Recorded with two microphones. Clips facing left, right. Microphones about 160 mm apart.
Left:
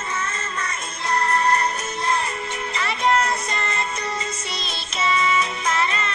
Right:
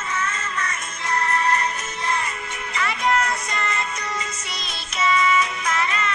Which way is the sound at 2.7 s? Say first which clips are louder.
Left 1 dB; 30° left (ahead or behind).